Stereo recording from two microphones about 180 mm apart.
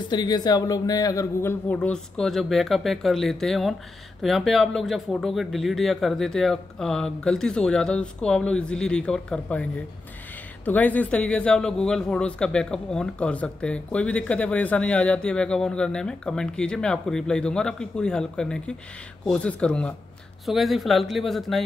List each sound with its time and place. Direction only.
0.0 s a man's voice: 25° left (ahead or behind); by 21.6 s centre (ahead or behind)